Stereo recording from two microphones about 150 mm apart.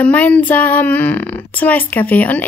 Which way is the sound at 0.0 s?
10° left (ahead or behind).